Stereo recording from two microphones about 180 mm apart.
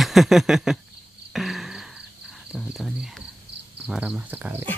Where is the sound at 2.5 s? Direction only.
Centre (ahead or behind).